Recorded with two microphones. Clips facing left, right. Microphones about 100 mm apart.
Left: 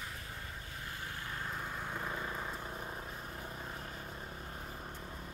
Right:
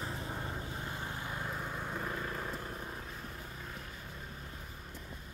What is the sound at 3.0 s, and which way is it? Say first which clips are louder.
Vehicle: left 1 dB; 25° left (ahead or behind).